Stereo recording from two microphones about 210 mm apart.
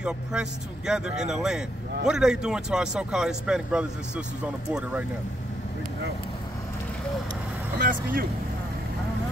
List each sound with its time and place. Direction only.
0.0 s speech: 5° right (ahead or behind)
7.8 s speech: 40° right (ahead or behind)